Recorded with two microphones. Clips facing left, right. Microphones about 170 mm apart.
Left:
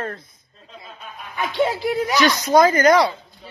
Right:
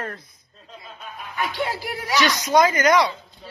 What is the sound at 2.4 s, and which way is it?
Speech, 35° left (ahead or behind).